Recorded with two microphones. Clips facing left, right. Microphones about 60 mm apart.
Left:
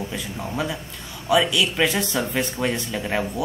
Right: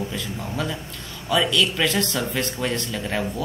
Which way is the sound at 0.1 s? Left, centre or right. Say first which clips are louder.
Left 1 dB; centre.